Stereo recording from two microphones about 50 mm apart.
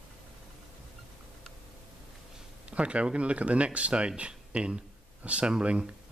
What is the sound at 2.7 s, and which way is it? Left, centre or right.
Speech, right.